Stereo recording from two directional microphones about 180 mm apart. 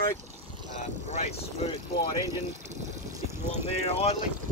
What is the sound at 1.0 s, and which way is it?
Speech, 40° left (ahead or behind).